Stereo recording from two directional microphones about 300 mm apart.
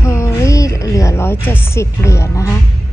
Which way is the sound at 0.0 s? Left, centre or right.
Centre.